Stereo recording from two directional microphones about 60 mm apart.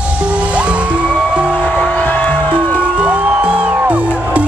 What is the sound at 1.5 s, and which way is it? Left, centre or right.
Music, left.